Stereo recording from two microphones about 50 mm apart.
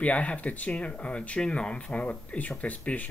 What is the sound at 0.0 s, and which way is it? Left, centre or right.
Speech, left.